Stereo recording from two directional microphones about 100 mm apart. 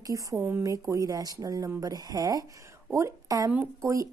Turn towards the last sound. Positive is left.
turn(degrees=-30)  # may be behind; listen again after turning